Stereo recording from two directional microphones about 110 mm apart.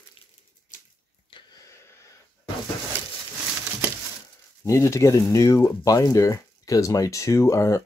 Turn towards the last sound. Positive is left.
turn(degrees=25)  # may be behind; listen again after turning